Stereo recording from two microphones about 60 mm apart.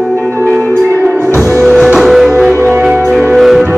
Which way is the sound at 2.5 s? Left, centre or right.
Right.